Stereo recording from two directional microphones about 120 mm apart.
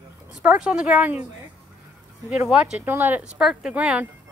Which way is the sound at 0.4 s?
10° right (ahead or behind).